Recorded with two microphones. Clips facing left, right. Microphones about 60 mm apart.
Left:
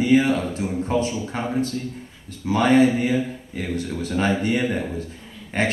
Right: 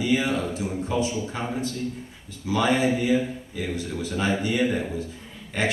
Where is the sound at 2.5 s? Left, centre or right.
Left.